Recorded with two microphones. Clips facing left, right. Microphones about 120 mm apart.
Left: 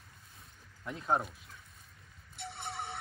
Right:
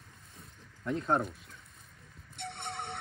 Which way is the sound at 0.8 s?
5° left (ahead or behind).